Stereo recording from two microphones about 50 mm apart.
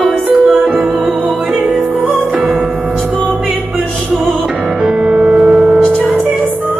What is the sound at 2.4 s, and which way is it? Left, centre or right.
Music, centre.